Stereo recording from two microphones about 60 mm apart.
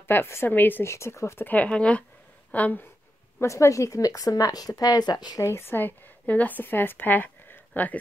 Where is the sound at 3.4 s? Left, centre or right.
Left.